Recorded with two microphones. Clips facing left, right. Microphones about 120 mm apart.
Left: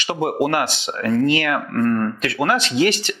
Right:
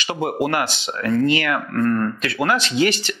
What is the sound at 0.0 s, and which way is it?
Speech, 55° left (ahead or behind).